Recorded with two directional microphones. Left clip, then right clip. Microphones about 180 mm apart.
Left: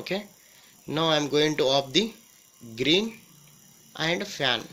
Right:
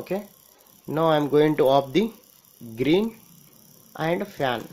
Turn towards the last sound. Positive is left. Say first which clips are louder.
# right 1 dB
turn(degrees=-10)  # may be behind; listen again after turning